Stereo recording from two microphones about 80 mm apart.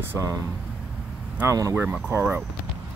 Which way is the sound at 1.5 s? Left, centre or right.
Right.